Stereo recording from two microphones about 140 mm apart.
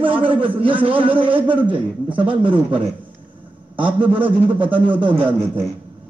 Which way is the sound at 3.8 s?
10° right (ahead or behind).